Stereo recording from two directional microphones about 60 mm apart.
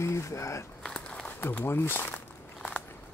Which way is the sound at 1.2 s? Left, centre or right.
Left.